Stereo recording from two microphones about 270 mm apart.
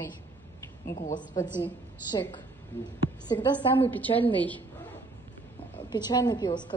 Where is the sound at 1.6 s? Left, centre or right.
Centre.